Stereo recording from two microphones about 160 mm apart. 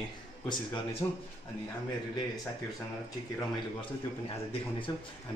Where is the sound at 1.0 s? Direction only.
25° left (ahead or behind).